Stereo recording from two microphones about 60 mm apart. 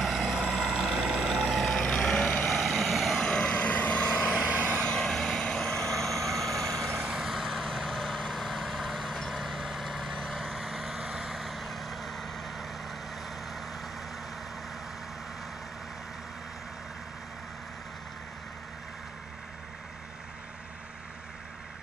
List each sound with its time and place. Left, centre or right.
0.0 s vehicle: centre
2.4 s vehicle: centre
3.2 s vehicle: centre
4.5 s vehicle: right
4.7 s vehicle: centre